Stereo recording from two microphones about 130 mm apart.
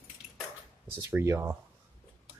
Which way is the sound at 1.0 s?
20° right (ahead or behind).